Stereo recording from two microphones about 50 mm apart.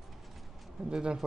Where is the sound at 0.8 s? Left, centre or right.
Centre.